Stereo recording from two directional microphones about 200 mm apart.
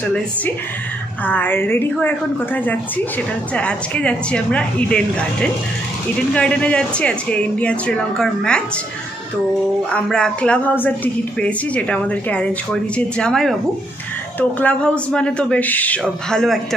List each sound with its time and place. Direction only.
1.2 s a woman's voice: 10° left (ahead or behind)
9.8 s speech: 5° left (ahead or behind)
14.6 s speech: 5° left (ahead or behind)